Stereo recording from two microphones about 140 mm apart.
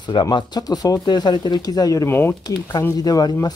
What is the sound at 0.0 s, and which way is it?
Speech, 35° left (ahead or behind).